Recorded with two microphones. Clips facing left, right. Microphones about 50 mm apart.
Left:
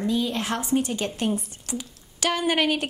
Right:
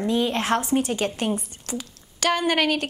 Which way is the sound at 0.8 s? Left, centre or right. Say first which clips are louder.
Right 3 dB; right.